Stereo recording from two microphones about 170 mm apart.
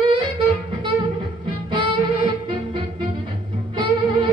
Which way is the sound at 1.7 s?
30° right (ahead or behind).